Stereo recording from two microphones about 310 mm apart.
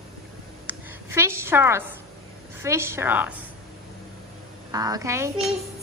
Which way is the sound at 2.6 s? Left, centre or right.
Centre.